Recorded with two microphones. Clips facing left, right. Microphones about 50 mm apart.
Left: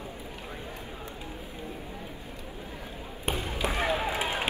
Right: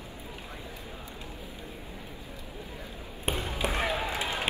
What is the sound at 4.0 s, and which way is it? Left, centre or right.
Run, left.